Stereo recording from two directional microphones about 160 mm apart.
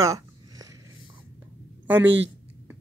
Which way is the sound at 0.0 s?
20° right (ahead or behind).